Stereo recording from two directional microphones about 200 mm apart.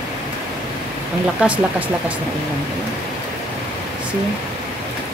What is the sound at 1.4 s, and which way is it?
Speech, 5° right (ahead or behind).